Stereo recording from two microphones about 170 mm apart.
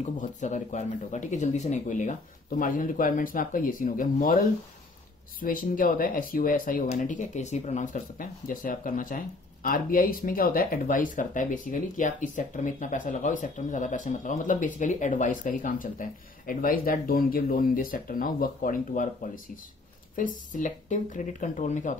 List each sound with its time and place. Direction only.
0.0 s speech: 45° left (ahead or behind)
5.4 s speech: 55° left (ahead or behind)